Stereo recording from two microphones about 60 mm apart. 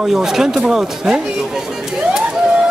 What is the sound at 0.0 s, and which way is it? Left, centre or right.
Speech, centre.